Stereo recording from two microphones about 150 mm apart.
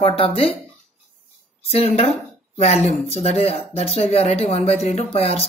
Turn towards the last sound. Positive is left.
turn(degrees=40)  # may be behind; listen again after turning